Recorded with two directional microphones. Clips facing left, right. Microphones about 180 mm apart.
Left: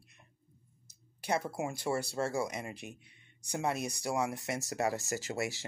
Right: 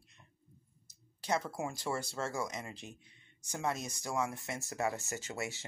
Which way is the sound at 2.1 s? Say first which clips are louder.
Left 4 dB; 35° left (ahead or behind).